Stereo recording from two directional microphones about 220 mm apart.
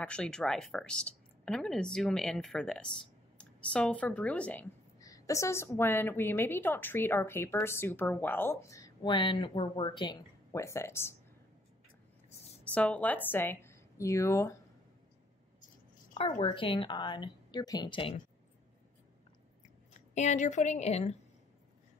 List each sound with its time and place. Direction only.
0.0 s a woman's voice: 5° left (ahead or behind)
12.6 s a woman's voice: 5° left (ahead or behind)
16.3 s a woman's voice: 20° left (ahead or behind)
20.2 s a woman's voice: 35° left (ahead or behind)